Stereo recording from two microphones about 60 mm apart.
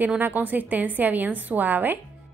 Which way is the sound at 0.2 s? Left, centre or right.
Right.